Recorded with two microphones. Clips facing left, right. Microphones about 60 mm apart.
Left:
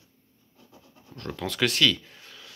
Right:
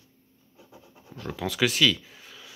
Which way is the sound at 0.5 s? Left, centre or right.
Centre.